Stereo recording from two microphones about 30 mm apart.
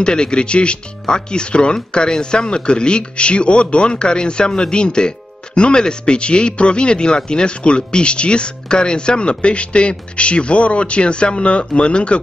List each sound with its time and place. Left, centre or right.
0.0 s speech: left